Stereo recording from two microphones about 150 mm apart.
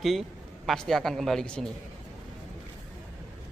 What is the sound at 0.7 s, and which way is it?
Speech, 5° left (ahead or behind).